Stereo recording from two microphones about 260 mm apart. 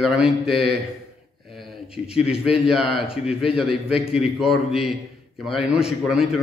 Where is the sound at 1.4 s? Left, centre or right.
Centre.